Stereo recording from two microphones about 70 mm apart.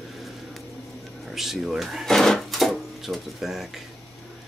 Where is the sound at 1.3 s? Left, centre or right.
Centre.